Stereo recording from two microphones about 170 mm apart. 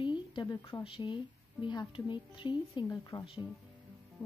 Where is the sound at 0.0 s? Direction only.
30° left (ahead or behind).